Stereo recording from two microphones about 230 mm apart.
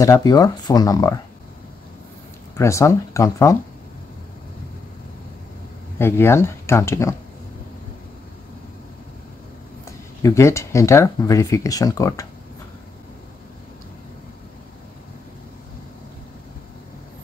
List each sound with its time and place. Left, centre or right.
0.0 s speech: centre
2.5 s speech: centre
5.9 s speech: centre
10.2 s speech: centre